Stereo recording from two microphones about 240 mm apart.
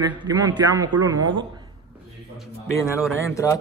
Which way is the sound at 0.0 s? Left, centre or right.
Centre.